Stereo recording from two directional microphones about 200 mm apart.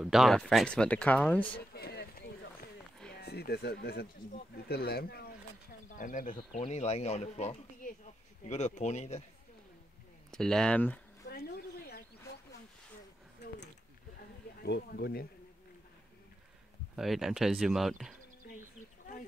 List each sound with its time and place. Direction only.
0.0 s speech: centre (ahead or behind)
1.7 s a sound: 50° left (ahead or behind)
3.2 s speech: 55° left (ahead or behind); by 9.2 s 35° left (ahead or behind)
10.3 s speech: 5° left (ahead or behind)
11.2 s a sound: 50° left (ahead or behind)
14.6 s speech: 55° left (ahead or behind)
16.9 s speech: centre (ahead or behind)